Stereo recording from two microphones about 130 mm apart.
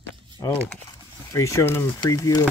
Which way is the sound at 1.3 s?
20° left (ahead or behind).